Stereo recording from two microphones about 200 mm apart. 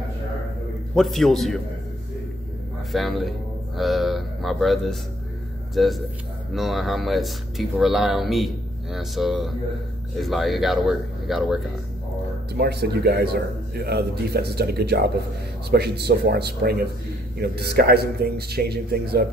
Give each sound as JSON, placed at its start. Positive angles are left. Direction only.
{"t": 0.9, "sound": "speech", "side_deg": 0}
{"t": 2.9, "sound": "speech", "side_deg": 0}
{"t": 12.5, "sound": "speech", "side_deg": -55}